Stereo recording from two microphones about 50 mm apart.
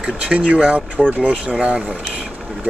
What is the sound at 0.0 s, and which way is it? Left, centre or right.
Speech, right.